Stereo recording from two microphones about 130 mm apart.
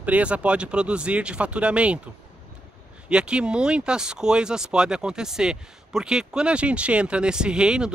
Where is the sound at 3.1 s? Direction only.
5° right (ahead or behind).